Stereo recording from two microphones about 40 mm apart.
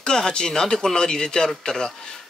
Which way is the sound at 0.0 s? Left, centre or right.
Centre.